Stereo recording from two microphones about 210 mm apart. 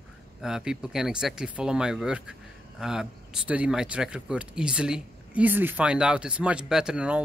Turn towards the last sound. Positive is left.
turn(degrees=-5)  # may be behind; listen again after turning